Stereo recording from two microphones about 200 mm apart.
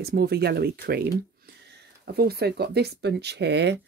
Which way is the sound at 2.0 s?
50° right (ahead or behind).